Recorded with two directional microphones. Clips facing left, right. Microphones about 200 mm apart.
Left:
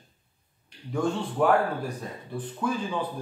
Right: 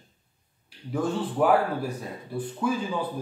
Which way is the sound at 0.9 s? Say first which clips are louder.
Even; 5° right (ahead or behind).